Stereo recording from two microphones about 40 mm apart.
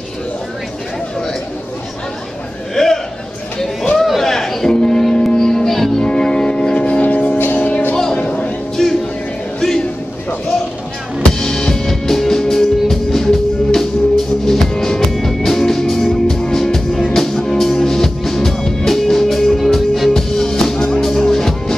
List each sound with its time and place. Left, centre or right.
2.7 s a sound: centre
3.9 s music: centre; by 7.8 s left
7.9 s music: left
8.8 s music: centre
11.2 s music: centre